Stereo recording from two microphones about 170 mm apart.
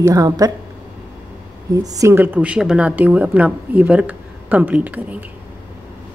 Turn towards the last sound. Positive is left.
turn(degrees=-10)  # may be behind; listen again after turning